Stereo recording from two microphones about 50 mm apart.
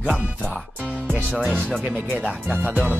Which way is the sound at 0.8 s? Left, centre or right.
Right.